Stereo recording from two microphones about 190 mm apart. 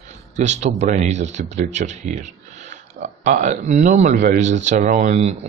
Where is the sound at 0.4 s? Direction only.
35° right (ahead or behind).